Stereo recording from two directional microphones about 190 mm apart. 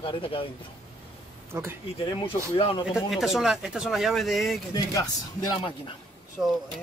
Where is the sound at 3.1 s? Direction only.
Centre (ahead or behind).